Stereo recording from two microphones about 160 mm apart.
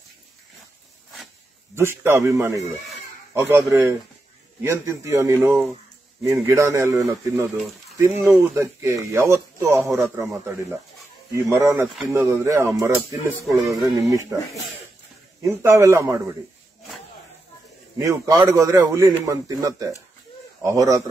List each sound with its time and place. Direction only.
1.8 s a man's voice: 15° right (ahead or behind)
15.4 s a man's voice: 20° right (ahead or behind)
17.9 s a man's voice: 20° right (ahead or behind)